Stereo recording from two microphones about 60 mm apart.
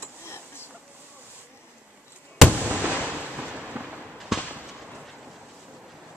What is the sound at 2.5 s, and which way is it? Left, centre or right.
Fireworks, right.